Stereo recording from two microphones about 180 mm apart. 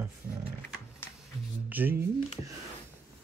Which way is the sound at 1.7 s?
10° right (ahead or behind).